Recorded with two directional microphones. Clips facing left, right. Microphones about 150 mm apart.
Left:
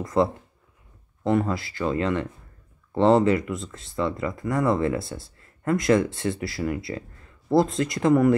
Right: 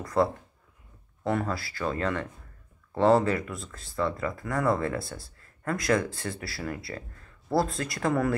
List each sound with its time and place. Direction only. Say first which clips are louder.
0.0 s speech: left 3 dB; 20° left (ahead or behind)